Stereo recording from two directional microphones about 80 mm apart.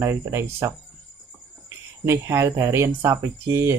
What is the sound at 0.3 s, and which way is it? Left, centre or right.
Speech, right.